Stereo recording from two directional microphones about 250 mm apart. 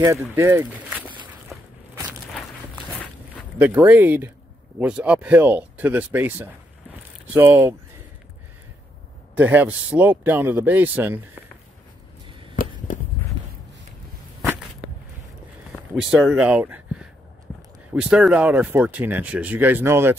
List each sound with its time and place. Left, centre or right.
0.4 s speech: centre
1.5 s walk: centre
2.9 s a sound: centre
4.7 s speech: centre
9.4 s speech: centre
12.6 s a sound: left
16.1 s speech: centre